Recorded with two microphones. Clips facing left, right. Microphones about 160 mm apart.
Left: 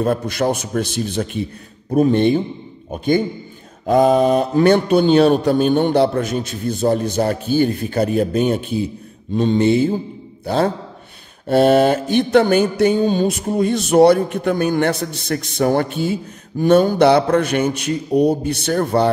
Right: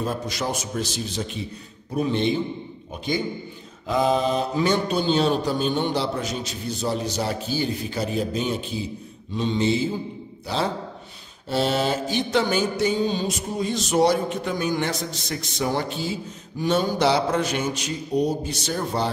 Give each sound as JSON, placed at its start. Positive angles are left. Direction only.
{"t": 0.0, "sound": "mantra", "side_deg": 60}
{"t": 1.9, "sound": "a man's voice", "side_deg": 50}
{"t": 3.8, "sound": "mantra", "side_deg": 50}
{"t": 10.4, "sound": "a man's voice", "side_deg": 55}
{"t": 11.4, "sound": "mantra", "side_deg": 55}